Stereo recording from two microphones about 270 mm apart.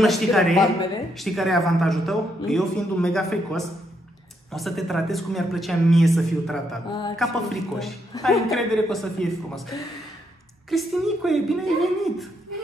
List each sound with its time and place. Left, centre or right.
0.0 s speech: centre
6.9 s speech: centre
7.2 s speech: centre
8.1 s speech: centre
8.5 s speech: centre